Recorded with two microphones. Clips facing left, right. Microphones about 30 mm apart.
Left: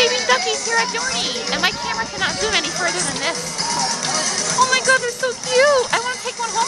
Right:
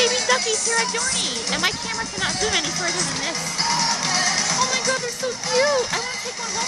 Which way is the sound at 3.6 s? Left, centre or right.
Centre.